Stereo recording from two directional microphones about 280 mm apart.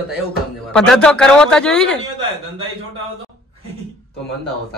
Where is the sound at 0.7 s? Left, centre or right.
Centre.